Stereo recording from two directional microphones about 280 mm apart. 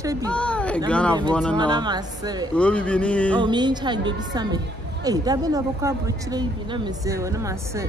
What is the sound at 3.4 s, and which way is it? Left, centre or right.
A woman's voice, centre.